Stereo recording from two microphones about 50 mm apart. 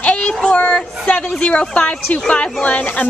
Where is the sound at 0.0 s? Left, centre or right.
Left.